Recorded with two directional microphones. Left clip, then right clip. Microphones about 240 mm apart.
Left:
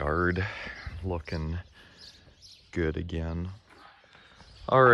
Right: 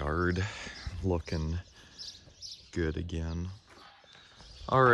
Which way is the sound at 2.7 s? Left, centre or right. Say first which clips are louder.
Left 4 dB; centre.